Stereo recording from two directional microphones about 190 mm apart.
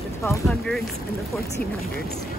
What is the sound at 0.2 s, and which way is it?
Speech, 10° left (ahead or behind).